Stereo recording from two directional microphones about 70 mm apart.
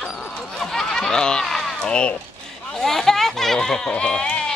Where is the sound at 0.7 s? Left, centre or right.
Centre.